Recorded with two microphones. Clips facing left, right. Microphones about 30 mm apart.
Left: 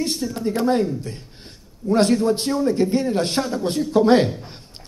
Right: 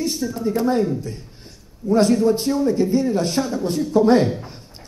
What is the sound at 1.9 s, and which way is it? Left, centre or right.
A man's voice, left.